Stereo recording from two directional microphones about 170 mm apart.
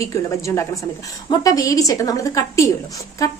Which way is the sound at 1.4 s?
20° left (ahead or behind).